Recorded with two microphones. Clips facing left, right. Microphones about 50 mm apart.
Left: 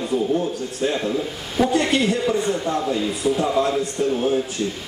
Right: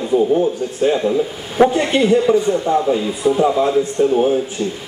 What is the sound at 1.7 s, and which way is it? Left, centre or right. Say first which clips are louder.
Speech: right 5 dB; centre.